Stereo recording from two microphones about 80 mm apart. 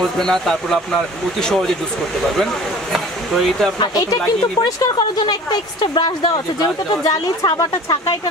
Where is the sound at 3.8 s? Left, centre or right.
Left.